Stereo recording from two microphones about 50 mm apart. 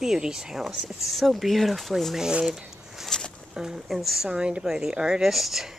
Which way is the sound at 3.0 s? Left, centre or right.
Centre.